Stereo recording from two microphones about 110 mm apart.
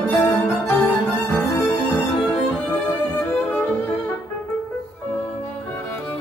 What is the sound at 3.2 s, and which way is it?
Violin, 20° left (ahead or behind).